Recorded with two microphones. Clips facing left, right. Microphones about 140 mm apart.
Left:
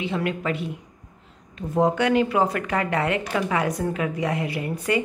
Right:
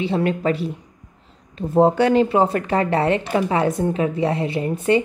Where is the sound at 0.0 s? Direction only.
30° right (ahead or behind).